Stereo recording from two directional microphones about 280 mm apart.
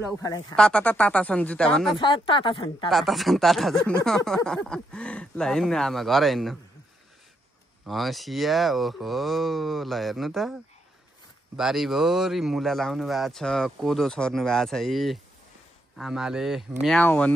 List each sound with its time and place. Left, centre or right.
0.2 s speech: centre
2.0 s speech: centre
2.9 s speech: centre
7.8 s speech: centre